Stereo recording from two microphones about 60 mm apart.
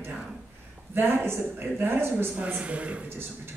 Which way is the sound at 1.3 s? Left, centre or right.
Right.